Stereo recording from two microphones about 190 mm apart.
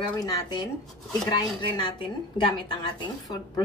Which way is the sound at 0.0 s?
20° left (ahead or behind).